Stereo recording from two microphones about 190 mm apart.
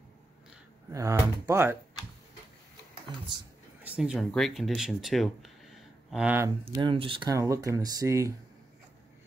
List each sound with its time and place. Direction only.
0.9 s speech: 15° right (ahead or behind)
3.8 s speech: 5° right (ahead or behind)
6.7 s speech: 25° right (ahead or behind)